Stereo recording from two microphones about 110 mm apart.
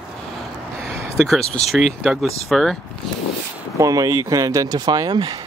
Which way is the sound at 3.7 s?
30° right (ahead or behind).